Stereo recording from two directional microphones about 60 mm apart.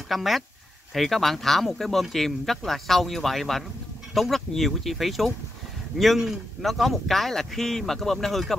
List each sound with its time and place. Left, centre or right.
0.1 s speech: centre